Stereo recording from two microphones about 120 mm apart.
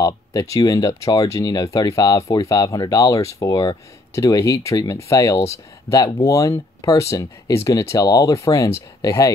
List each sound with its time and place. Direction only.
0.0 s speech: 30° left (ahead or behind)